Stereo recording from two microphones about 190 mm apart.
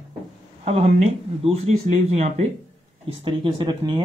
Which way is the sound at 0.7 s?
35° right (ahead or behind).